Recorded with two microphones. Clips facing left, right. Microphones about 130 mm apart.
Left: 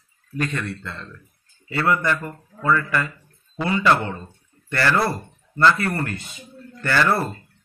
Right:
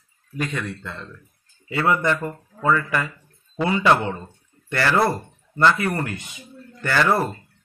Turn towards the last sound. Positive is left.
turn(degrees=-15)  # may be behind; listen again after turning